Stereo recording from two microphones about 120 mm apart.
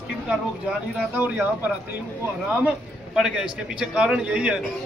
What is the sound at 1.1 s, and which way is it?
Speech, 15° right (ahead or behind).